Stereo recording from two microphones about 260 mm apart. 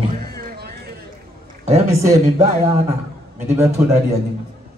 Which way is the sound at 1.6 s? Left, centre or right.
Right.